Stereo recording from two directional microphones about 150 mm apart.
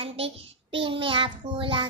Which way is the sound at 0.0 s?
35° right (ahead or behind).